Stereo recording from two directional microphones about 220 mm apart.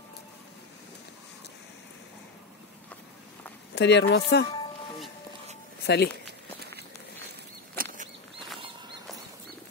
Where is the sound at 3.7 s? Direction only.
50° left (ahead or behind).